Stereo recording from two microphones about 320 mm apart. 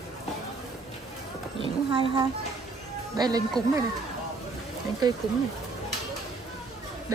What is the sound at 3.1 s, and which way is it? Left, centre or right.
Speech, centre.